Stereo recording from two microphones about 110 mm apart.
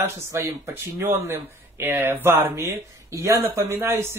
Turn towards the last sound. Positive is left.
turn(degrees=-25)  # may be behind; listen again after turning